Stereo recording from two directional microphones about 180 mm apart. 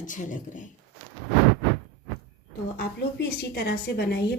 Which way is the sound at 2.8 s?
65° left (ahead or behind).